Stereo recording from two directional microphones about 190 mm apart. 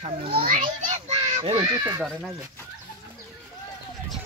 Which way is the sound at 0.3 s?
45° right (ahead or behind).